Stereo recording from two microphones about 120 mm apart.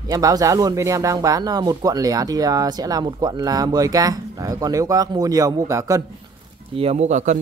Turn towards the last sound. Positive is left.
turn(degrees=-75)  # may be behind; listen again after turning